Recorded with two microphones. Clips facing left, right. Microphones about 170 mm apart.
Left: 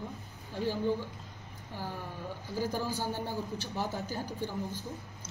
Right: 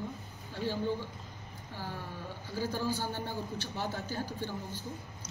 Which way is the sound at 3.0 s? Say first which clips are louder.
Left 2 dB; 40° left (ahead or behind).